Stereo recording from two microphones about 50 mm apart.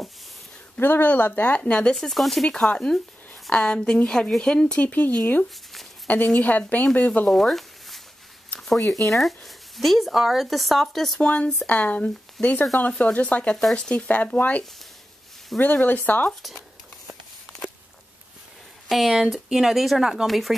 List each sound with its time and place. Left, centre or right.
0.7 s speech: left
2.0 s speech: centre
2.4 s a woman's voice: centre
4.8 s speech: left
7.2 s zipper: centre
8.5 s a sound: centre
9.1 s speech: centre
11.1 s speech: centre
15.6 s speech: left
18.9 s speech: centre